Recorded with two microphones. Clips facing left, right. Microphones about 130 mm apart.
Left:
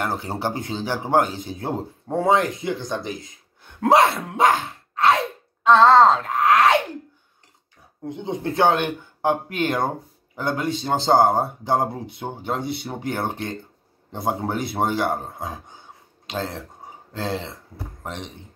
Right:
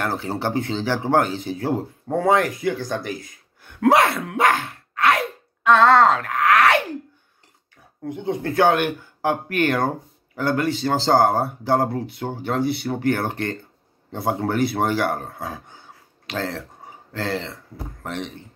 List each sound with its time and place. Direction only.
0.0 s speech: 20° left (ahead or behind)
4.9 s wail: 25° left (ahead or behind)
8.1 s speech: 20° left (ahead or behind)